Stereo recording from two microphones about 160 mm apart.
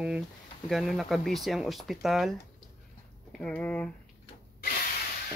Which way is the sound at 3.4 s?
10° left (ahead or behind).